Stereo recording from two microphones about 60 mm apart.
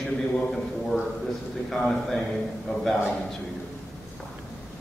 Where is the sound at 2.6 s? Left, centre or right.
Centre.